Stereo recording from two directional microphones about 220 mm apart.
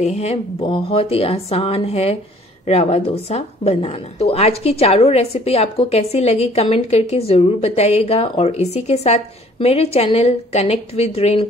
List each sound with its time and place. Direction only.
0.0 s a woman's voice: 30° left (ahead or behind)